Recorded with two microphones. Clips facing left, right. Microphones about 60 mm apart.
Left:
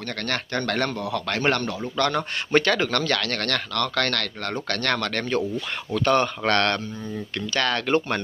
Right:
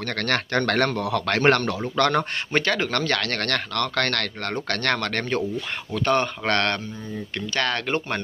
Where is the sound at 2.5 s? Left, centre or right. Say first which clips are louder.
Left 3 dB; centre.